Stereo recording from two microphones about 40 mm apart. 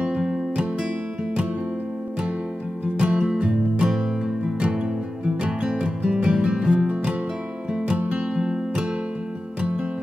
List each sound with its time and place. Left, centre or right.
0.0 s music: right
3.0 s music: right